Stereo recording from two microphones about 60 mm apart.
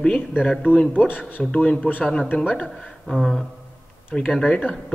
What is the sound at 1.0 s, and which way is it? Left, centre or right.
Speech, left.